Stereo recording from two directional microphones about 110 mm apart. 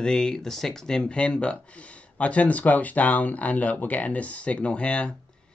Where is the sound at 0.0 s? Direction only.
5° left (ahead or behind).